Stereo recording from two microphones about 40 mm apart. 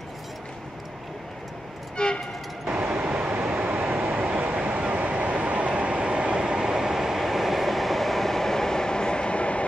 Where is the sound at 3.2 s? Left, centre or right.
Right.